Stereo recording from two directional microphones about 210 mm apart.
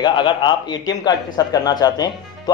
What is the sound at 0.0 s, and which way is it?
Speech, 20° left (ahead or behind).